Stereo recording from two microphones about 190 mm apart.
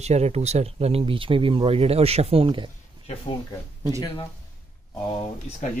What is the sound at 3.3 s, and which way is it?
Speech, 30° left (ahead or behind).